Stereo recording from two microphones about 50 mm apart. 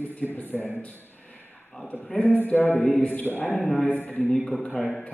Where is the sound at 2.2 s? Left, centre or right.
Left.